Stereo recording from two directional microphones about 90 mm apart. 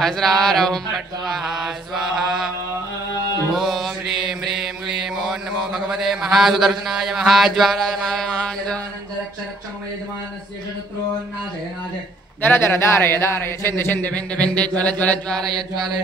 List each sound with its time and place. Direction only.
0.0 s mantra: 5° left (ahead or behind)
3.5 s mantra: centre (ahead or behind)
12.4 s speech: 25° left (ahead or behind)